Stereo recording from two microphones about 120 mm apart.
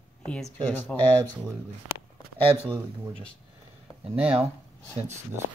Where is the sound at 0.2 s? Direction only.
10° left (ahead or behind).